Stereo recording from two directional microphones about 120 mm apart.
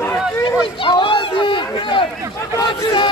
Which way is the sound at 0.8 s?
40° left (ahead or behind).